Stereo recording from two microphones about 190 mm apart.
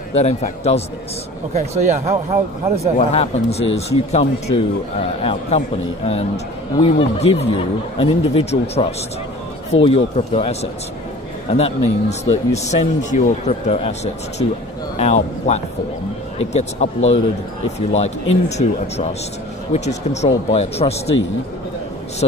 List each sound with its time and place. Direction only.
0.1 s speech: 35° left (ahead or behind)
1.5 s speech: 35° right (ahead or behind)
3.0 s speech: 35° left (ahead or behind)